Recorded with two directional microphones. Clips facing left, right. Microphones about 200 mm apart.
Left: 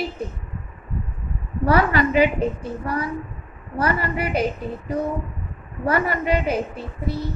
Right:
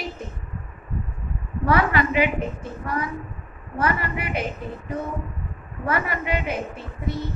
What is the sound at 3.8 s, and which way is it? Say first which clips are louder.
Speech: left 2 dB; 35° left (ahead or behind).